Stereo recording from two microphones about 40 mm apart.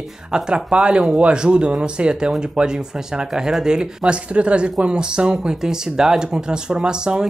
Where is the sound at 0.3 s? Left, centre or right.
Centre.